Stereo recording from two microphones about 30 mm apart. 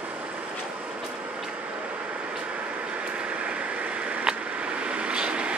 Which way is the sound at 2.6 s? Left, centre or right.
Right.